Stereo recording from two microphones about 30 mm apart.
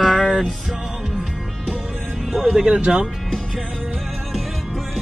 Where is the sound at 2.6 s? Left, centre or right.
Right.